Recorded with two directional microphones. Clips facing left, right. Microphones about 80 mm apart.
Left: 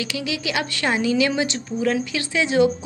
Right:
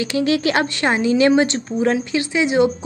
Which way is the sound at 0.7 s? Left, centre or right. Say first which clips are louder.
Even; right.